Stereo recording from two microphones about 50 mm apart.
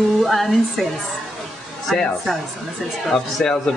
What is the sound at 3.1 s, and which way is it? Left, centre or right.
Speech, centre.